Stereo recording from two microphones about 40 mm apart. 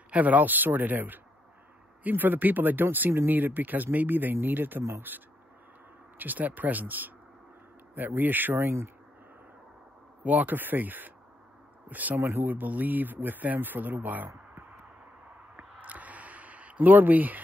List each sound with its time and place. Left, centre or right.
0.1 s speech: right
3.3 s speech: right
6.1 s speech: right
8.5 s speech: right
10.2 s speech: right
12.2 s speech: right
12.4 s speech: right
15.8 s a sound: right